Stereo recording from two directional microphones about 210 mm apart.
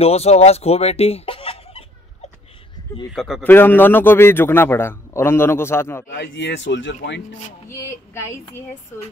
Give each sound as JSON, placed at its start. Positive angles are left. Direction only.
{"t": 0.0, "sound": "speech", "side_deg": 30}
{"t": 3.1, "sound": "a man's voice", "side_deg": 0}
{"t": 6.0, "sound": "speech", "side_deg": 55}
{"t": 7.7, "sound": "speech", "side_deg": 10}